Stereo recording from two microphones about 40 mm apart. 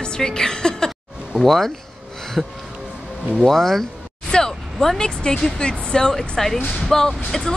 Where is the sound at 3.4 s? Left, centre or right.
Centre.